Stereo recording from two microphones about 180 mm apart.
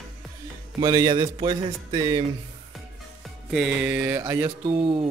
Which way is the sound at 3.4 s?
Centre (ahead or behind).